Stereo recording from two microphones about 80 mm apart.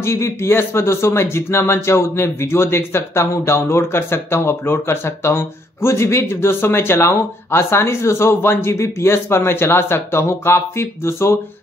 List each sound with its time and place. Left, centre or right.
0.0 s speech: left